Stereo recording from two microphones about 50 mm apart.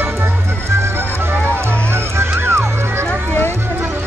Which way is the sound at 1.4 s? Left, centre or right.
Right.